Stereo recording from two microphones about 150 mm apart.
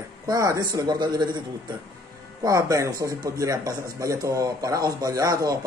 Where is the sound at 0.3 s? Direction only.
20° right (ahead or behind).